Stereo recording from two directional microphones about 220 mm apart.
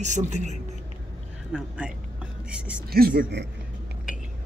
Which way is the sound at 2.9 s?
45° right (ahead or behind).